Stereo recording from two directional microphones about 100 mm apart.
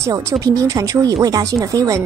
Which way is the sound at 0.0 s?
35° right (ahead or behind).